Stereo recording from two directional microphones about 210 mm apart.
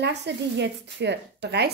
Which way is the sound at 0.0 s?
55° right (ahead or behind).